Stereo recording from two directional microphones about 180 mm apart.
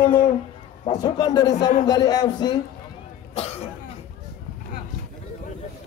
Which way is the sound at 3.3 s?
35° left (ahead or behind).